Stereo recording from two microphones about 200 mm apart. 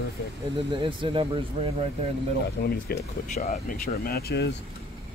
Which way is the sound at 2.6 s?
50° left (ahead or behind).